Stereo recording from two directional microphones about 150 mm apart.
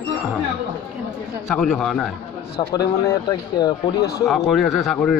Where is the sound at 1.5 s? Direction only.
5° left (ahead or behind).